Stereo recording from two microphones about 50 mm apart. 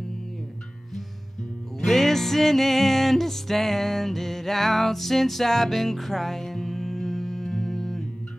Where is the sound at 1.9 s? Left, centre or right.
Centre.